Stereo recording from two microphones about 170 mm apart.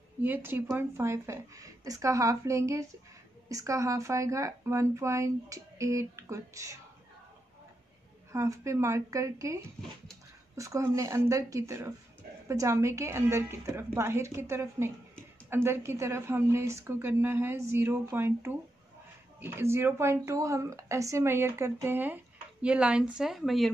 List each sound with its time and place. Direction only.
0.2 s speech: 10° right (ahead or behind)
8.3 s speech: 15° right (ahead or behind); by 23.7 s centre (ahead or behind)